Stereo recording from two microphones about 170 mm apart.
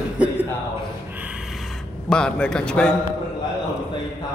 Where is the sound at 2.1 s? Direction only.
5° left (ahead or behind).